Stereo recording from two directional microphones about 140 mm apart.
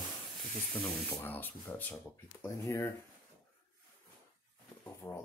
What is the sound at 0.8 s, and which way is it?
Speech, 15° left (ahead or behind).